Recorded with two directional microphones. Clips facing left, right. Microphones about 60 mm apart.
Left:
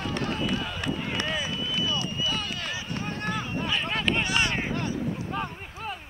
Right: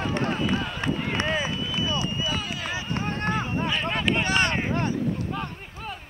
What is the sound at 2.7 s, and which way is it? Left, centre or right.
Run, right.